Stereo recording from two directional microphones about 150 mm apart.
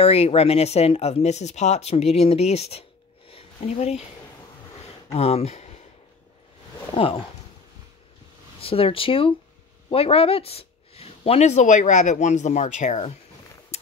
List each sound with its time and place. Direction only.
0.0 s speech: 40° left (ahead or behind)
3.3 s a sound: 40° left (ahead or behind)
5.1 s speech: 45° left (ahead or behind)
6.9 s speech: 35° left (ahead or behind)
8.5 s speech: 40° left (ahead or behind)